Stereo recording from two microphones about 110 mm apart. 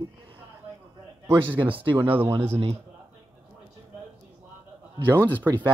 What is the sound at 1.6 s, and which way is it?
Speech, 50° right (ahead or behind).